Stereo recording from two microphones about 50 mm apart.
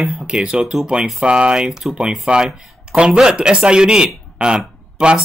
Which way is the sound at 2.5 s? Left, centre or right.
Centre.